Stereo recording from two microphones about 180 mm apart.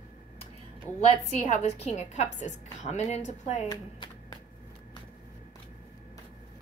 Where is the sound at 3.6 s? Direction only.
20° left (ahead or behind).